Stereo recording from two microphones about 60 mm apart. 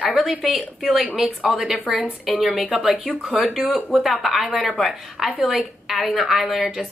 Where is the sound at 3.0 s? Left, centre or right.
Right.